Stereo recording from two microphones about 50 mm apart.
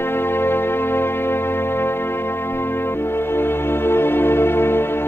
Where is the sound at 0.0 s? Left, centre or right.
Left.